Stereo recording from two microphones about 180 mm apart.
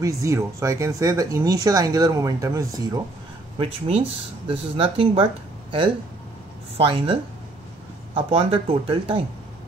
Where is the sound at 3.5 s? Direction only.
30° right (ahead or behind).